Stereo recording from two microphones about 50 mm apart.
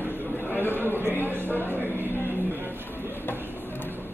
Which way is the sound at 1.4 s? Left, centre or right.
Left.